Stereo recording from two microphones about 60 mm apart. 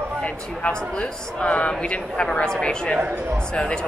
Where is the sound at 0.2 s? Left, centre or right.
Centre.